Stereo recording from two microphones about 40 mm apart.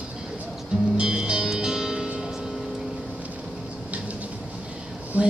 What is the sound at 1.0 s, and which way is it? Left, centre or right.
Music, right.